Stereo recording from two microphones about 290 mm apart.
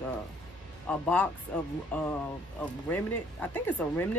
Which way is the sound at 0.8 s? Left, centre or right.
Centre.